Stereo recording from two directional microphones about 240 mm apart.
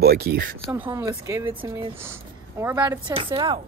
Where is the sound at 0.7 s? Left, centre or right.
Centre.